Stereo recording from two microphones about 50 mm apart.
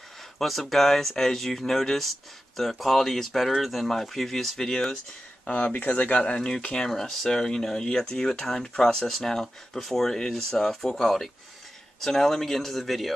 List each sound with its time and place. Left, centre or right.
0.4 s speech: centre
5.5 s speech: left
6.4 s speech: centre